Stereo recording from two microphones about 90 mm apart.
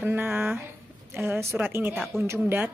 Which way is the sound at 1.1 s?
25° right (ahead or behind).